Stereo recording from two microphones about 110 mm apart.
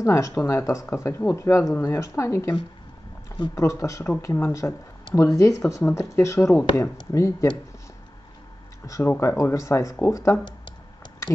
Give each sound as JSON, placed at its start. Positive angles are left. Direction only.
{"t": 0.0, "sound": "speech", "side_deg": 30}
{"t": 3.5, "sound": "speech", "side_deg": 25}
{"t": 8.8, "sound": "speech", "side_deg": 30}